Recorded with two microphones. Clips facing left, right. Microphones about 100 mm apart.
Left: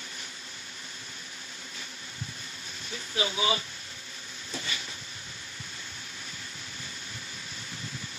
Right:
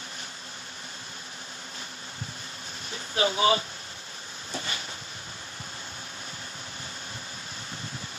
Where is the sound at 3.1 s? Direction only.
45° right (ahead or behind).